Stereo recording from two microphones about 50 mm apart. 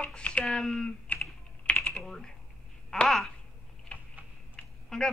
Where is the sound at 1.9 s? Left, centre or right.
Centre.